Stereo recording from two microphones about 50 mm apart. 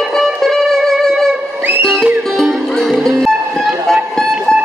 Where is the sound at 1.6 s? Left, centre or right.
Right.